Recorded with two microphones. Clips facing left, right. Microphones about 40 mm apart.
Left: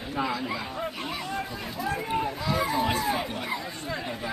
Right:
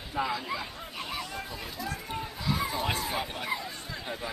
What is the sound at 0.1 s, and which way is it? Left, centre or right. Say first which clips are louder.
Speech: left 2 dB; centre.